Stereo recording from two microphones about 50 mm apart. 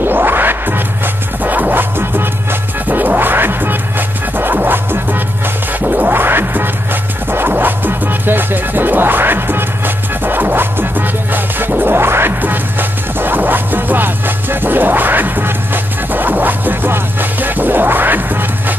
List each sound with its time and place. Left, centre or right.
0.0 s music: right